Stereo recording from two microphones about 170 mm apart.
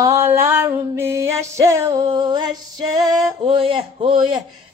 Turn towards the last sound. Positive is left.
turn(degrees=-30)  # may be behind; listen again after turning